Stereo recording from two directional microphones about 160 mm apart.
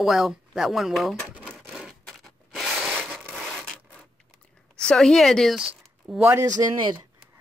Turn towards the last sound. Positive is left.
turn(degrees=-25)  # may be behind; listen again after turning